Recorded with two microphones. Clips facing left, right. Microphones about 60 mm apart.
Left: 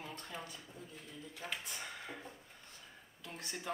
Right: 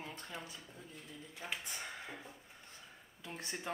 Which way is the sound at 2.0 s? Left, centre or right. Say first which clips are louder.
Left 1 dB; centre.